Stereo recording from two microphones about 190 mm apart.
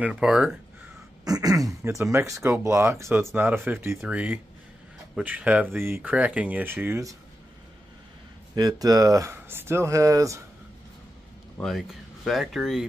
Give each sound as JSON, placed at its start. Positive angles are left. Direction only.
{"t": 0.0, "sound": "speech", "side_deg": -5}
{"t": 1.2, "sound": "speech", "side_deg": -20}
{"t": 8.5, "sound": "speech", "side_deg": -20}
{"t": 11.5, "sound": "speech", "side_deg": 0}